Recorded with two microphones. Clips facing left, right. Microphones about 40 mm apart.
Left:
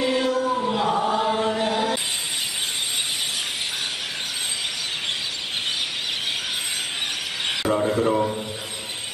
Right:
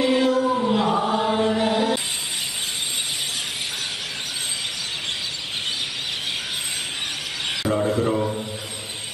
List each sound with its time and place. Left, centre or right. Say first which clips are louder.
0.0 s chant: right 3 dB; centre
7.6 s rub: even; centre